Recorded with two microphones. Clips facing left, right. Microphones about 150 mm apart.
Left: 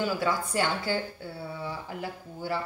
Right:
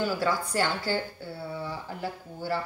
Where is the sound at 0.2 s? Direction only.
20° left (ahead or behind).